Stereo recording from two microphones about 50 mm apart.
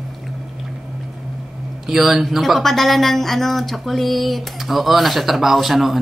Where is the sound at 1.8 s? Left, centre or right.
Centre.